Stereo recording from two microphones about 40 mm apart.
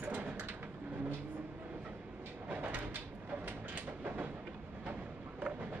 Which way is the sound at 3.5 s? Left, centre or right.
Right.